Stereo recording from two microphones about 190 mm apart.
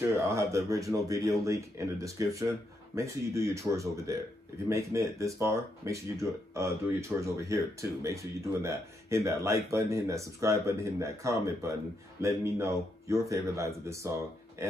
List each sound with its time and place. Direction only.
0.3 s speech: 15° right (ahead or behind)